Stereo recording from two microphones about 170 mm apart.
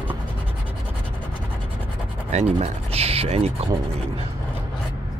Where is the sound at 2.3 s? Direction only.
40° right (ahead or behind).